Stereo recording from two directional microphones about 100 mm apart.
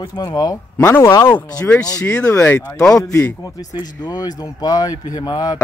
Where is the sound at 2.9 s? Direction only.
30° left (ahead or behind).